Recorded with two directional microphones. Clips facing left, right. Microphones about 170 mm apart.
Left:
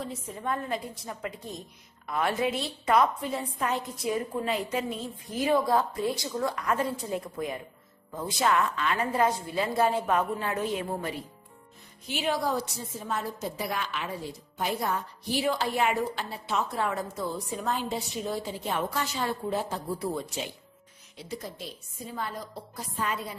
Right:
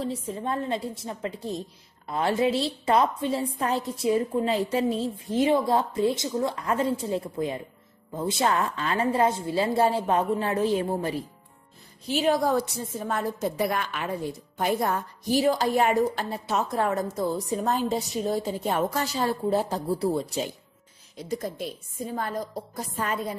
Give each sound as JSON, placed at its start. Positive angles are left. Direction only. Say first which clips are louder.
{"t": 0.0, "sound": "a woman's voice", "louder": "right 5 dB", "side_deg": -30}
{"t": 12.5, "sound": "a woman's voice", "louder": "right 6 dB", "side_deg": -55}
{"t": 21.2, "sound": "a woman's voice", "louder": "right 7 dB", "side_deg": -45}